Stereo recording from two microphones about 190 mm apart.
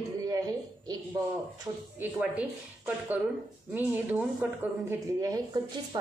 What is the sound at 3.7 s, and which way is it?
A woman's voice, 10° right (ahead or behind).